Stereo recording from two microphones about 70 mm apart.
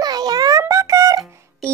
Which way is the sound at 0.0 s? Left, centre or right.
Right.